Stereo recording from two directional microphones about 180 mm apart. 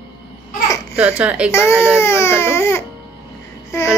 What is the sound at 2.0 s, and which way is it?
A child's voice, 15° left (ahead or behind).